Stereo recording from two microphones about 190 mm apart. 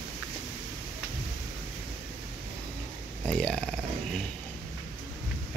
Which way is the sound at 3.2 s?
5° left (ahead or behind).